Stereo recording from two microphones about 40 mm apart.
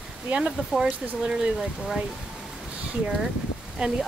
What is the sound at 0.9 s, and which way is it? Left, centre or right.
Speech, right.